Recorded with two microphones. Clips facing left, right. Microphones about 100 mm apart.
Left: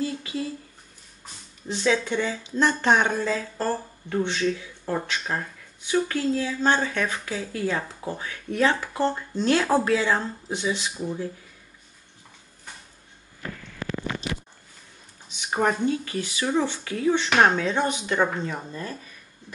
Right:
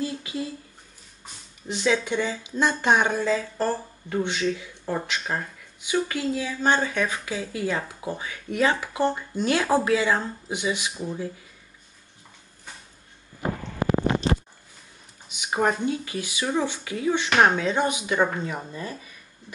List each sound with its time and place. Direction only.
0.1 s speech: 10° right (ahead or behind)
1.7 s speech: 15° right (ahead or behind)
10.9 s speech: centre (ahead or behind)
13.5 s a sound: 45° right (ahead or behind)
15.2 s a sound: 15° right (ahead or behind)
15.7 s speech: 5° right (ahead or behind)